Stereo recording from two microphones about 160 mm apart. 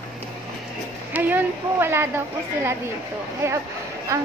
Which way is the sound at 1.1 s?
10° right (ahead or behind).